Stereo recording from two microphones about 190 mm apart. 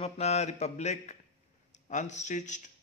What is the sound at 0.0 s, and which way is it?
Mantra, 35° left (ahead or behind).